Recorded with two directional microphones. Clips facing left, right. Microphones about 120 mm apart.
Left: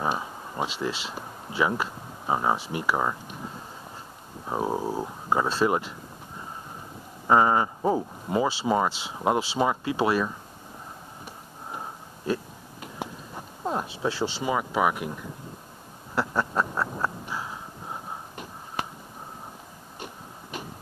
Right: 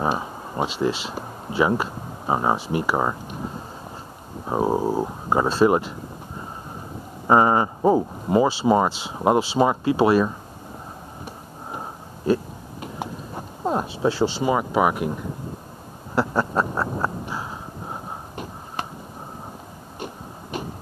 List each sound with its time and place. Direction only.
0.0 s a sound: 30° right (ahead or behind)
0.7 s speech: 25° right (ahead or behind)
7.2 s speech: 35° right (ahead or behind)
11.7 s sniff: 30° right (ahead or behind)
13.3 s speech: 35° right (ahead or behind)
16.2 s a sound: 35° right (ahead or behind)